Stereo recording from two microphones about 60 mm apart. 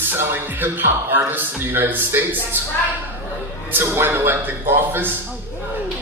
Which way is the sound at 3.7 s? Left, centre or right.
Right.